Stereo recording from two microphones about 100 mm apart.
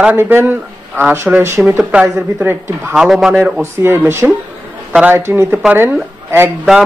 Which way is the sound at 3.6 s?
25° right (ahead or behind).